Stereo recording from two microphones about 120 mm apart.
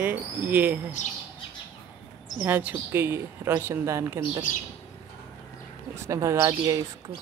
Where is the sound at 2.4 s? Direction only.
15° right (ahead or behind).